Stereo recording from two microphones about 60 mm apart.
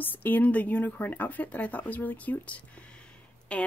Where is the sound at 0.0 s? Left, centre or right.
Left.